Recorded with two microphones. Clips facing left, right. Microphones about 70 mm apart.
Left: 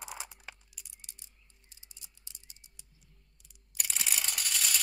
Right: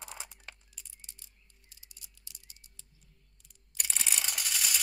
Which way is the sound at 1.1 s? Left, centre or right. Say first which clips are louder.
Even; left.